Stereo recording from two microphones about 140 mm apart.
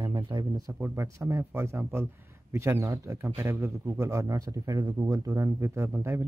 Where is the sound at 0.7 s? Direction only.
15° right (ahead or behind).